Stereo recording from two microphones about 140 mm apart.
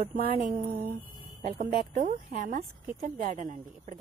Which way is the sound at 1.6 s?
80° right.